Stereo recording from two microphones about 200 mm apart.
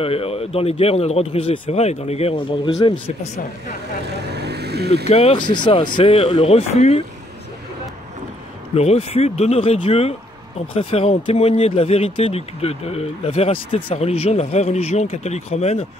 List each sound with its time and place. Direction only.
0.0 s speech: 30° left (ahead or behind)
4.1 s vehicle: 55° right (ahead or behind)
5.0 s speech: 30° left (ahead or behind)
8.7 s speech: 30° left (ahead or behind)